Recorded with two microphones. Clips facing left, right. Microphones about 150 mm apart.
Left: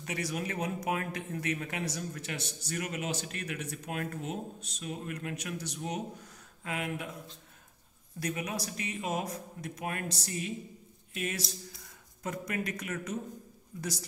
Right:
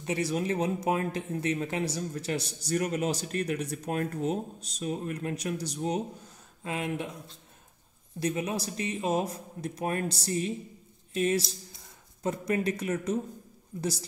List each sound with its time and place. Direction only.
0.0 s speech: 25° right (ahead or behind)
8.2 s speech: 25° right (ahead or behind)